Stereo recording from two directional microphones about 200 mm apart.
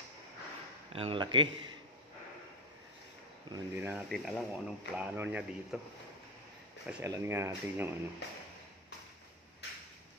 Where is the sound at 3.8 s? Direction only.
5° right (ahead or behind).